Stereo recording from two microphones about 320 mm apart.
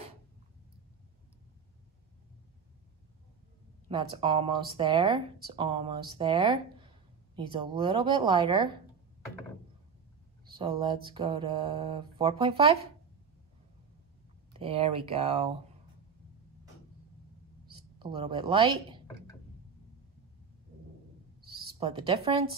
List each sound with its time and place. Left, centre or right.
3.9 s speech: centre
10.5 s speech: centre
14.5 s speech: centre
17.9 s speech: centre
21.5 s speech: centre